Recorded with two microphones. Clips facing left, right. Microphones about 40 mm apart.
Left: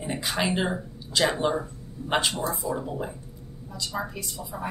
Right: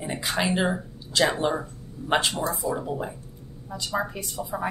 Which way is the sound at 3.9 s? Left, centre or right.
Right.